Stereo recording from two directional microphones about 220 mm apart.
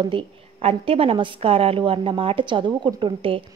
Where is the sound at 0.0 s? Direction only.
25° right (ahead or behind).